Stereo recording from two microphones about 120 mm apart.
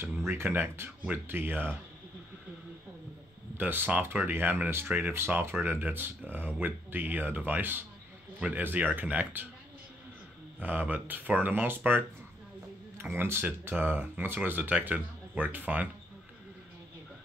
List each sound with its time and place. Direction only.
0.3 s speech: 20° right (ahead or behind)
3.5 s speech: 15° right (ahead or behind)
10.6 s speech: 15° right (ahead or behind)